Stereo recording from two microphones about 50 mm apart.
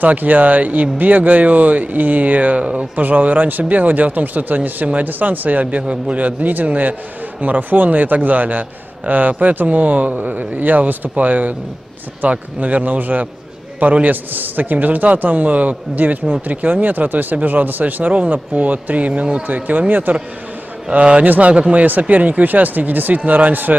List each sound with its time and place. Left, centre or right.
0.0 s speech: right
2.6 s speech: centre
3.0 s speech: right